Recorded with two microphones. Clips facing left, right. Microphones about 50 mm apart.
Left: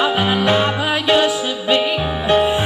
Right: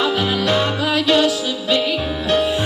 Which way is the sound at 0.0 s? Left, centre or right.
Left.